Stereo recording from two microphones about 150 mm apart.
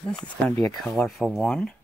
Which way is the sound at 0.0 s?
5° left (ahead or behind).